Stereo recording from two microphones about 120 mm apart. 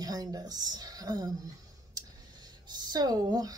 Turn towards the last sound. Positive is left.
turn(degrees=-35)  # may be behind; listen again after turning